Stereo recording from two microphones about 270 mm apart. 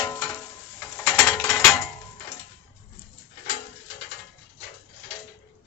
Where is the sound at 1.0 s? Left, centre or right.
Centre.